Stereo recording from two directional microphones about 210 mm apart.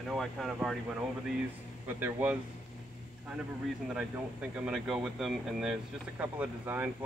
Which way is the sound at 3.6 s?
5° right (ahead or behind).